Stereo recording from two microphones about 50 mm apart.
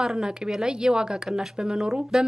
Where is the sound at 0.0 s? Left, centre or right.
Centre.